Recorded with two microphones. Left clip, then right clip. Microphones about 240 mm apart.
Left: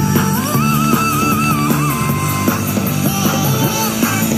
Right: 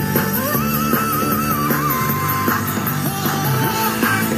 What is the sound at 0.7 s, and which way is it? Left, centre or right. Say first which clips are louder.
Music: left 5 dB; left.